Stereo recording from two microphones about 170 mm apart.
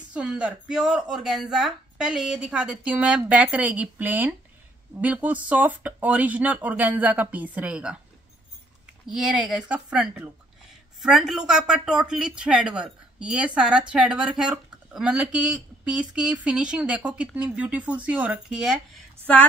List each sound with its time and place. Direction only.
0.1 s speech: 5° right (ahead or behind)
9.0 s speech: 5° right (ahead or behind)